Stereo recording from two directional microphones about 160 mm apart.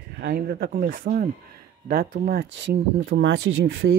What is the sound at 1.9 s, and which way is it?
Speech, 70° right (ahead or behind).